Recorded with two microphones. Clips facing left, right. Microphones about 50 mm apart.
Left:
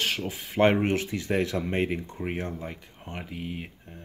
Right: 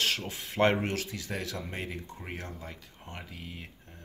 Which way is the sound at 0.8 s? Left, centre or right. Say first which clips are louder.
Left 7 dB; left.